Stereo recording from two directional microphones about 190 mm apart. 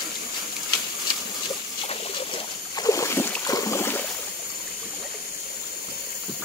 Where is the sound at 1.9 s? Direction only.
30° left (ahead or behind).